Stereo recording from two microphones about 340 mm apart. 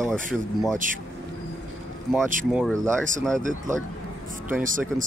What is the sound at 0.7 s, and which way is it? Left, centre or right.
Speech, right.